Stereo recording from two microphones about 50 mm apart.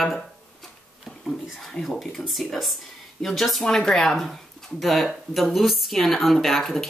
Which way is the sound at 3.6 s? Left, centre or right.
Centre.